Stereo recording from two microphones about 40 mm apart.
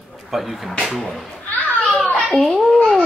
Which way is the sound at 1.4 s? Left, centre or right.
Left.